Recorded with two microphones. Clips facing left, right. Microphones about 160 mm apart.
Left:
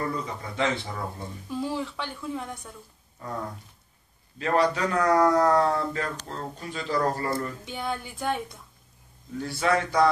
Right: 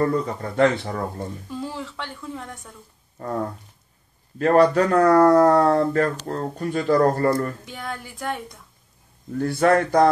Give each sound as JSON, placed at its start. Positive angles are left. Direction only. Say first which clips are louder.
{"t": 0.0, "sound": "speech", "louder": "right 9 dB", "side_deg": -50}
{"t": 1.5, "sound": "speech", "louder": "left 1 dB", "side_deg": 0}
{"t": 3.2, "sound": "a sound", "louder": "right 8 dB", "side_deg": -50}
{"t": 4.4, "sound": "speech", "louder": "right 8 dB", "side_deg": -50}
{"t": 7.6, "sound": "speech", "louder": "left 1 dB", "side_deg": 0}
{"t": 9.4, "sound": "speech", "louder": "right 7 dB", "side_deg": -50}